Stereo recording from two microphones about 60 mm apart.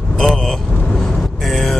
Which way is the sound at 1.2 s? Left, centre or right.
Centre.